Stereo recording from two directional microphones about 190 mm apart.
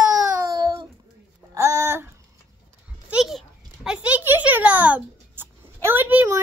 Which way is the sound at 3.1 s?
Centre (ahead or behind).